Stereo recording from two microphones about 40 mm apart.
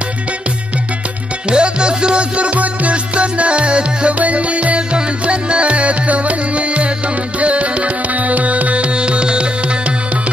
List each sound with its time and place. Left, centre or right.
1.5 s music: right